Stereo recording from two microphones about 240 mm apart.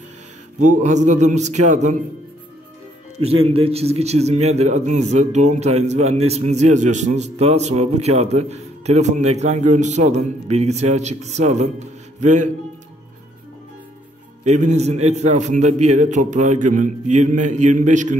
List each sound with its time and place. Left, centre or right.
0.6 s a man's voice: right
3.2 s a man's voice: right
14.4 s a man's voice: right